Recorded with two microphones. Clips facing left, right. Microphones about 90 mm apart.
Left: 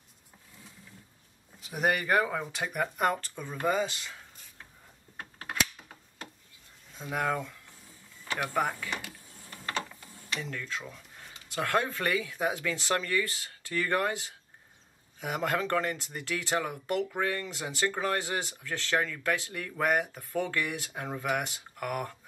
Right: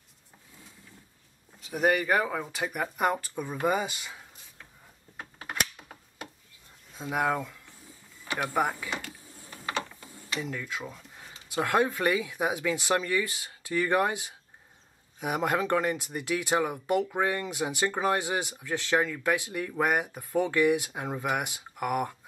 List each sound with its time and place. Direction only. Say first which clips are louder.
1.6 s speech: right 3 dB; centre (ahead or behind)
7.0 s speech: right 3 dB; 15° right (ahead or behind)
10.4 s speech: right 2 dB; 15° right (ahead or behind)